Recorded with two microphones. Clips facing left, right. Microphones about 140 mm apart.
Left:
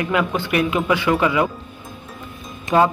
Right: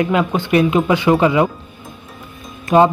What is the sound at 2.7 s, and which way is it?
Speech, 20° right (ahead or behind).